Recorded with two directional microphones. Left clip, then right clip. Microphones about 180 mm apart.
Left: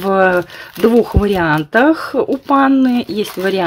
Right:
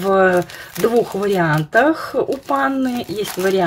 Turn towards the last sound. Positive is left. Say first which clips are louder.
# left 1 dB
turn(degrees=40)  # may be behind; listen again after turning